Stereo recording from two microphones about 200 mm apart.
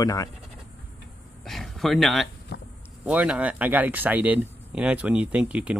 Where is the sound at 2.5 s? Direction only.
60° left (ahead or behind).